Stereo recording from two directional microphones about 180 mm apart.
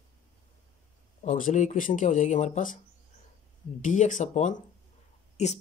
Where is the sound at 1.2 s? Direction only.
45° left (ahead or behind).